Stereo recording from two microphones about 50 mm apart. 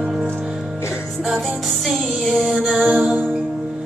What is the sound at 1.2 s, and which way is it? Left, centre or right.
Music, centre.